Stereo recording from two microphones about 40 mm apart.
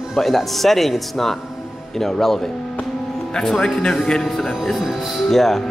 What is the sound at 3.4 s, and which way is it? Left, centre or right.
Speech, centre.